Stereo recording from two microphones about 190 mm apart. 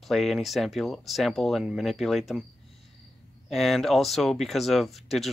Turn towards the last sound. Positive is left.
turn(degrees=0)  # may be behind; listen again after turning